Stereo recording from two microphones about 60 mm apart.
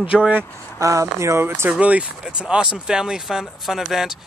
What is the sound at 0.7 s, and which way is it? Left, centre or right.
Speech, right.